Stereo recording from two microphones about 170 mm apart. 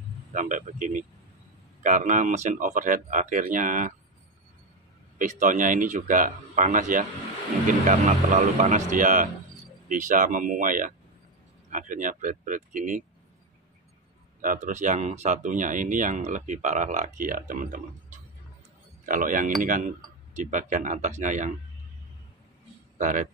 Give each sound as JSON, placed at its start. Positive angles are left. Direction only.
{"t": 0.3, "sound": "speech", "side_deg": -50}
{"t": 5.2, "sound": "speech", "side_deg": -50}
{"t": 14.4, "sound": "speech", "side_deg": -50}
{"t": 22.9, "sound": "speech", "side_deg": -50}